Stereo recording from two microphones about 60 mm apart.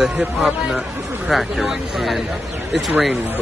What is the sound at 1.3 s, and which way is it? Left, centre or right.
Speech, centre.